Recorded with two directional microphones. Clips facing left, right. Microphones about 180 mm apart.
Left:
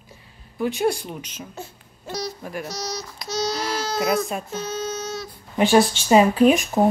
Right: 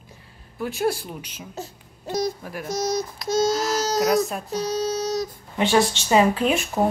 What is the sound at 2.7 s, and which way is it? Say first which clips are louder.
Speech: right 7 dB; 50° right (ahead or behind).